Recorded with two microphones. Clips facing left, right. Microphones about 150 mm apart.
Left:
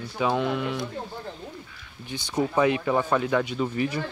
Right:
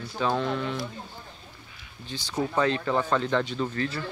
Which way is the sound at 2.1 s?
15° left (ahead or behind).